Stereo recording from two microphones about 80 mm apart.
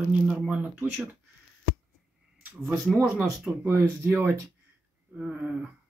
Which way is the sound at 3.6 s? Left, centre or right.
Right.